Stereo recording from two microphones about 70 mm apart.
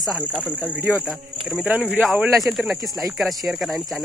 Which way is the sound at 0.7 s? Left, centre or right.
Right.